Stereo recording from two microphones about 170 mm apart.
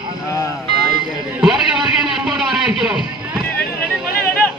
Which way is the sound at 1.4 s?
5° right (ahead or behind).